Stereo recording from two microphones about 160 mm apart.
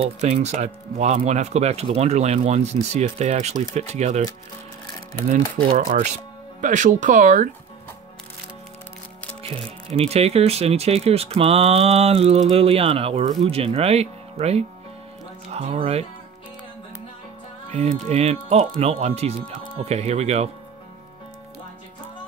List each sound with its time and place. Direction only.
0.0 s speech: 45° right (ahead or behind)
5.6 s speech: 65° right (ahead or behind)
6.6 s speech: 50° right (ahead or behind)
9.4 s speech: 35° right (ahead or behind)
17.6 s speech: 45° right (ahead or behind)